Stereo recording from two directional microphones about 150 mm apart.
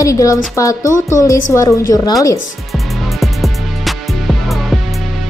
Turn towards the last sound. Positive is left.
turn(degrees=0)  # may be behind; listen again after turning